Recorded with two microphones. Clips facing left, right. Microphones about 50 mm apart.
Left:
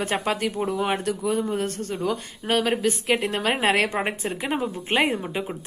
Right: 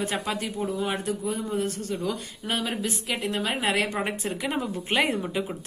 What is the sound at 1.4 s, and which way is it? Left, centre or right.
Speech, left.